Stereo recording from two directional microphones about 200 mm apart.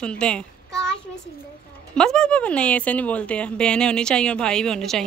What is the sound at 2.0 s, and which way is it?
A woman's voice, 5° left (ahead or behind).